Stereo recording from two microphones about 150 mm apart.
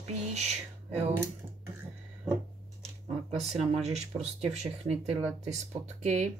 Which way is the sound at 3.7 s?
45° right (ahead or behind).